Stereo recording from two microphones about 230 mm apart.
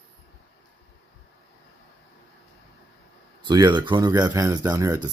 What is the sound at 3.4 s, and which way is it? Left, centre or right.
Speech, centre.